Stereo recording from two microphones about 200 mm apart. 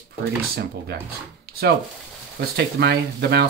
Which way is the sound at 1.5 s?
50° right (ahead or behind).